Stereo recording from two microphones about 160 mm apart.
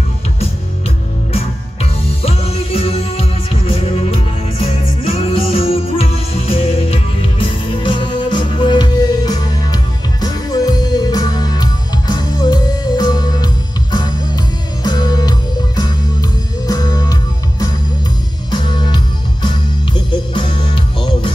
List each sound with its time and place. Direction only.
1.3 s music: 40° left (ahead or behind)